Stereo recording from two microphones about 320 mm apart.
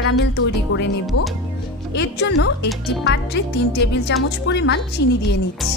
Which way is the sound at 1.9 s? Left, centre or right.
Left.